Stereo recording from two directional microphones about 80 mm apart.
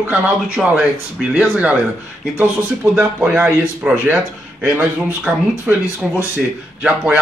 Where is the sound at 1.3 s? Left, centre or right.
Centre.